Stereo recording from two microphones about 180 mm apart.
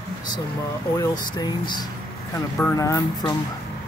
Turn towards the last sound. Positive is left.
turn(degrees=20)  # may be behind; listen again after turning